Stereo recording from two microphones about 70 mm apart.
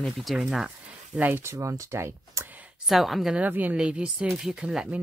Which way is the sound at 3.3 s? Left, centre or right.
Right.